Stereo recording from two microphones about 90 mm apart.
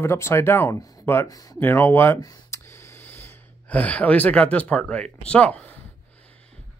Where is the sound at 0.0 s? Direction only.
30° left (ahead or behind).